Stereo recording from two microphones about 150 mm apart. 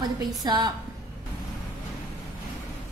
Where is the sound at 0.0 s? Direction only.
25° right (ahead or behind).